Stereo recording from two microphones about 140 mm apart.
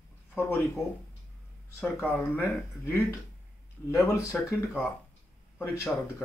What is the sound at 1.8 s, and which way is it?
Speech, 10° left (ahead or behind).